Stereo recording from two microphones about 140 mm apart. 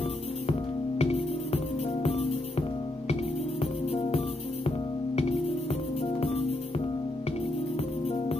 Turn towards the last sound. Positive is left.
turn(degrees=45)  # may be behind; listen again after turning